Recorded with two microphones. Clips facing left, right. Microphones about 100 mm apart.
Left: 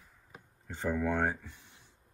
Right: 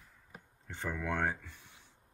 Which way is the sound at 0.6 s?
15° left (ahead or behind).